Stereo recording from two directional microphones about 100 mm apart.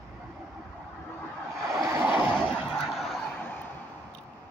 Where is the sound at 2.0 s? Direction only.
15° right (ahead or behind).